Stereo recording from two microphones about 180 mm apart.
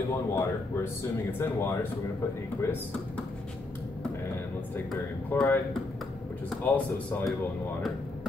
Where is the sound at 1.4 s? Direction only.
15° left (ahead or behind).